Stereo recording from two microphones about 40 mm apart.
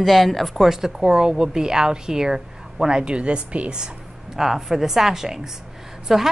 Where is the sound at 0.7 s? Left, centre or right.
Centre; by 3.8 s right.